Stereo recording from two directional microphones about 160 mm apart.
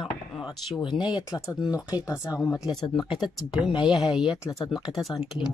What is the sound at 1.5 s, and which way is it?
Speech, 20° left (ahead or behind).